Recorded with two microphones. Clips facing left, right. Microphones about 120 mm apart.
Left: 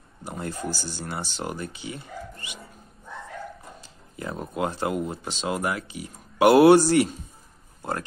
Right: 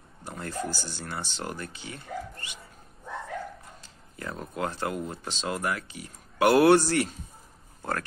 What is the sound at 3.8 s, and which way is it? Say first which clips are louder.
Speech: left 4 dB; 10° left (ahead or behind).